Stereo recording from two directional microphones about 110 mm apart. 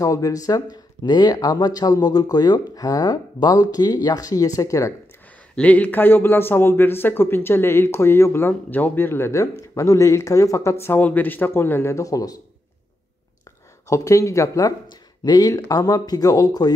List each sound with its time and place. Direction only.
0.0 s speech: 30° left (ahead or behind)
5.6 s a man's voice: 15° left (ahead or behind); by 12.4 s 30° left (ahead or behind)
13.8 s a man's voice: 30° left (ahead or behind)
14.9 s speech: 40° left (ahead or behind)